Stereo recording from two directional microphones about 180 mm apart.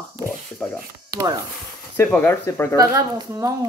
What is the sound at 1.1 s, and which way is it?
Speech, 20° right (ahead or behind).